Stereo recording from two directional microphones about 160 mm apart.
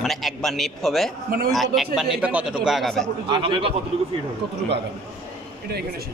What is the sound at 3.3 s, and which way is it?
Speech, 35° right (ahead or behind).